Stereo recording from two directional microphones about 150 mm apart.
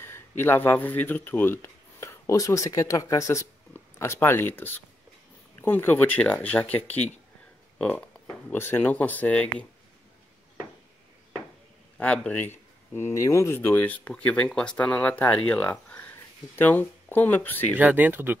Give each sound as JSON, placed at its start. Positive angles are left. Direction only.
{"t": 0.0, "sound": "speech", "side_deg": 15}
{"t": 7.8, "sound": "speech", "side_deg": 5}
{"t": 12.0, "sound": "speech", "side_deg": 10}
{"t": 17.7, "sound": "speech", "side_deg": -10}